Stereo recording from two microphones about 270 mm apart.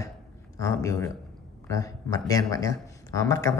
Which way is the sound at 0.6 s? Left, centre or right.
Centre.